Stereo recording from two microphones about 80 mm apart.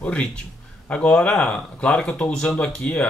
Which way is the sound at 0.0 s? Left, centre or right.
Centre.